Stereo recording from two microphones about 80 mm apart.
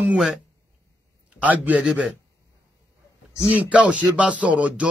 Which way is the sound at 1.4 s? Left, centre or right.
Centre.